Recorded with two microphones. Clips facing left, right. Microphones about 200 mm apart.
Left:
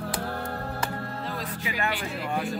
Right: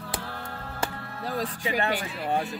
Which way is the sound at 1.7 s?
45° right (ahead or behind).